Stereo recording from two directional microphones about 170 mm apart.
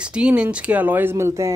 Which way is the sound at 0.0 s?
5° right (ahead or behind).